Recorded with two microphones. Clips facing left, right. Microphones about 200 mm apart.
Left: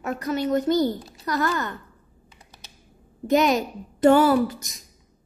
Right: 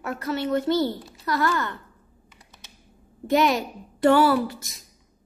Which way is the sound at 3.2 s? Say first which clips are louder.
Left 1 dB; 20° left (ahead or behind).